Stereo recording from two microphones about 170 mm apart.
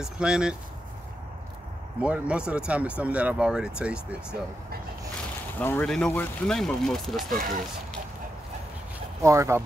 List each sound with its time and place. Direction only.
0.0 s speech: 5° right (ahead or behind)
2.0 s speech: 5° right (ahead or behind)
5.6 s speech: 10° left (ahead or behind)
9.2 s speech: 15° right (ahead or behind)